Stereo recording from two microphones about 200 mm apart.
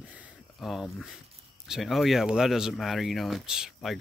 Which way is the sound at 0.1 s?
5° right (ahead or behind).